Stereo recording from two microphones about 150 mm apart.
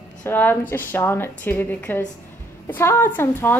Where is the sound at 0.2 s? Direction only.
15° left (ahead or behind).